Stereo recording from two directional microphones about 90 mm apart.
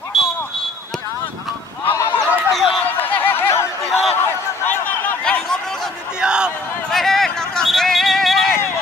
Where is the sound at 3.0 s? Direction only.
20° left (ahead or behind).